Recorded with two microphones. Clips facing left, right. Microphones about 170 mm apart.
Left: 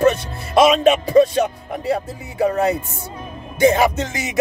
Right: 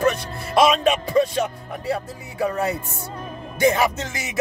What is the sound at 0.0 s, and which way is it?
Music, 25° left (ahead or behind).